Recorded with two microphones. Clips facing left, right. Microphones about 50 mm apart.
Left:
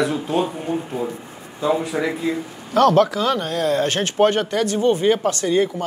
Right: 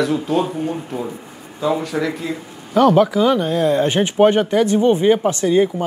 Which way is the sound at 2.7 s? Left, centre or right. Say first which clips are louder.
Right 2 dB; centre.